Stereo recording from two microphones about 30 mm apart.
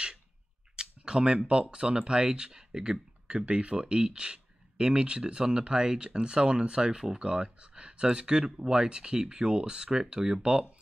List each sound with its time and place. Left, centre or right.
0.7 s speech: right